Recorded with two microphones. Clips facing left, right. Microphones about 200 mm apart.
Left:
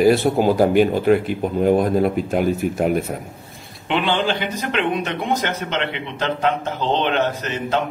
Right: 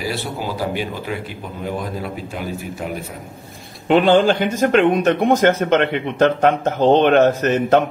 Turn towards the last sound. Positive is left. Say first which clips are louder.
# right 7 dB
turn(degrees=-50)  # may be behind; listen again after turning